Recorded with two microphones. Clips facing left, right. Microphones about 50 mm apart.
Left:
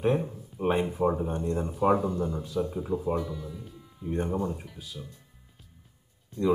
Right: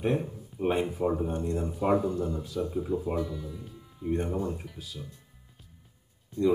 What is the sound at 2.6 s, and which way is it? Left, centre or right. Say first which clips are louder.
Speech: left 3 dB; left.